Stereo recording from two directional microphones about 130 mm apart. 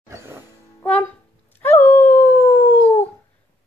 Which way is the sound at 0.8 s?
10° left (ahead or behind).